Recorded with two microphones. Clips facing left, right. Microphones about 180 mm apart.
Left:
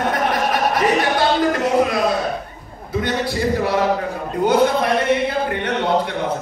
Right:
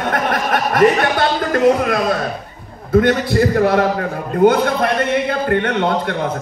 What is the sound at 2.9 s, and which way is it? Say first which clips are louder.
A man's voice: right 8 dB; 55° right (ahead or behind).